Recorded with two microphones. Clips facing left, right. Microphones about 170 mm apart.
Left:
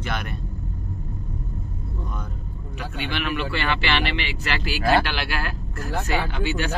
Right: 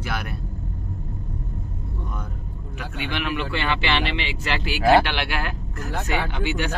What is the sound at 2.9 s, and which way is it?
Speech, 15° right (ahead or behind).